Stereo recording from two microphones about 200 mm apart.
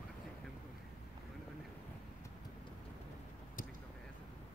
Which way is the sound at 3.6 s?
45° left (ahead or behind).